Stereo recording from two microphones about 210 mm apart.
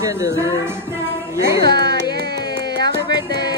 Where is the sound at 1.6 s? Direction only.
20° left (ahead or behind).